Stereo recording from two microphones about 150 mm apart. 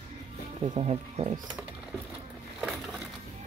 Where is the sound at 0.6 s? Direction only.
45° right (ahead or behind).